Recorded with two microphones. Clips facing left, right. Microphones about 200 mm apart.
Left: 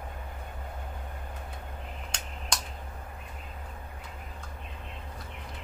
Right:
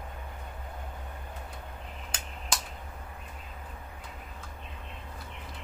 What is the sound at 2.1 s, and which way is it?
Finger snapping, 5° right (ahead or behind).